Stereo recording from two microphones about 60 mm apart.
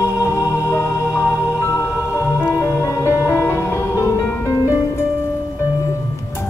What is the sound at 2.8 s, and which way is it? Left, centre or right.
Music, left.